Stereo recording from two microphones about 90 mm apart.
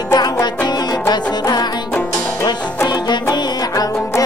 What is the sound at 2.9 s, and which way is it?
Music, 55° left (ahead or behind).